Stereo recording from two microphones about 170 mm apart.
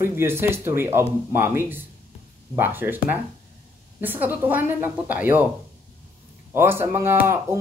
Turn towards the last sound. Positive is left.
turn(degrees=-10)  # may be behind; listen again after turning